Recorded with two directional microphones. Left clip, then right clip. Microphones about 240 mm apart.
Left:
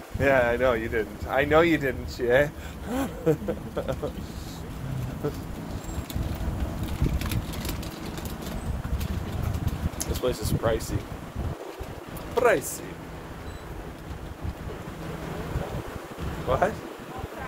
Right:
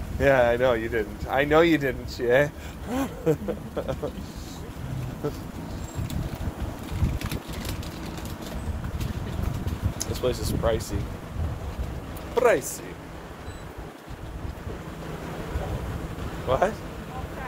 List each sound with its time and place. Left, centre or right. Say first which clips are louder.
0.2 s speech: right 2 dB; right; by 3.9 s centre
9.9 s speech: right 1 dB; centre
12.4 s speech: right 1 dB; centre
16.4 s speech: right 1 dB; centre